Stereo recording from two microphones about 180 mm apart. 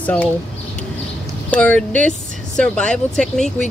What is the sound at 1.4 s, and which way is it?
Speech, 10° left (ahead or behind).